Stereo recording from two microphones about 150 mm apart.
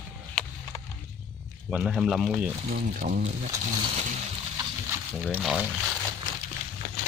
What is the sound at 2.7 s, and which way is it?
Speech, 60° right (ahead or behind).